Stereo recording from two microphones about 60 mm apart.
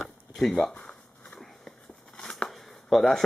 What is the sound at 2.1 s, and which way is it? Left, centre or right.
Shuffling cards, centre.